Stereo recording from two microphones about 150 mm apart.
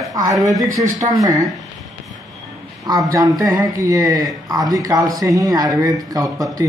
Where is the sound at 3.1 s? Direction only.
25° right (ahead or behind).